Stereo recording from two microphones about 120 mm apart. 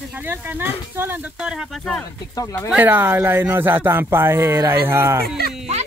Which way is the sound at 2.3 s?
25° left (ahead or behind).